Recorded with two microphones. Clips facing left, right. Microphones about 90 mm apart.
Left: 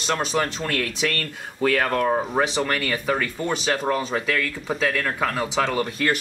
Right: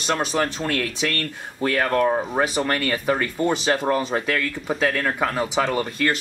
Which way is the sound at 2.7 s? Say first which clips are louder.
Right 2 dB; 30° right (ahead or behind).